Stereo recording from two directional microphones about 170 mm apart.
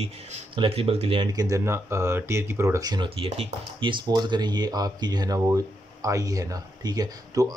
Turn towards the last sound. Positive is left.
turn(degrees=-20)  # may be behind; listen again after turning